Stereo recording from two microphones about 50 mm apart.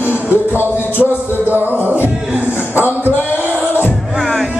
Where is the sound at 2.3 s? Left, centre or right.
Right.